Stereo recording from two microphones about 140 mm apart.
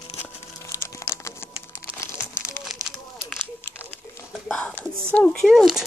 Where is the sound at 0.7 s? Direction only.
20° left (ahead or behind).